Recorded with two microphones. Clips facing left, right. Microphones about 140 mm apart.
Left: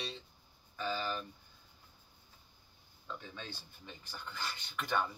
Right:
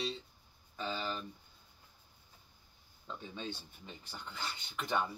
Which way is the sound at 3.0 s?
25° right (ahead or behind).